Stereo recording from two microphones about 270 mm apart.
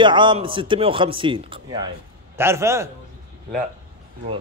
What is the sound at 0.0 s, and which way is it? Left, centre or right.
A man's voice, centre.